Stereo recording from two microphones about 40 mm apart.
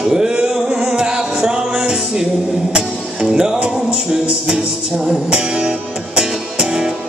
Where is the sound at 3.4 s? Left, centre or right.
Right.